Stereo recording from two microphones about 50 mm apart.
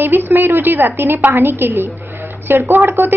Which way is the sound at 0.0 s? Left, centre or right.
Right.